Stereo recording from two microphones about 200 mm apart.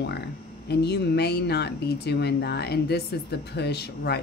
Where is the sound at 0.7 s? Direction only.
55° left (ahead or behind).